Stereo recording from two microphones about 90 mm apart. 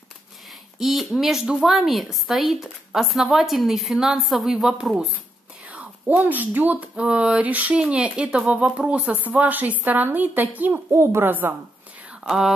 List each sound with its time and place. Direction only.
0.7 s a woman's voice: centre (ahead or behind)
5.7 s speech: 15° right (ahead or behind)
10.9 s speech: 35° right (ahead or behind)
12.2 s speech: 5° right (ahead or behind)